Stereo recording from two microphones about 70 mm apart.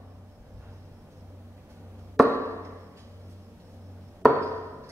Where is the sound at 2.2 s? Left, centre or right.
Right.